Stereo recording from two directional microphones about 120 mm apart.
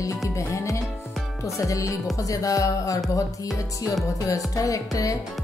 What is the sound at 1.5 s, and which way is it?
Speech, 25° left (ahead or behind).